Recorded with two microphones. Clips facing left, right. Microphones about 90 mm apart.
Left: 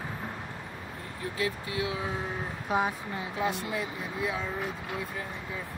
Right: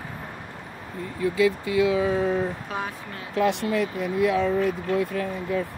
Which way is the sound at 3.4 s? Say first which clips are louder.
Right 9 dB; 75° right (ahead or behind).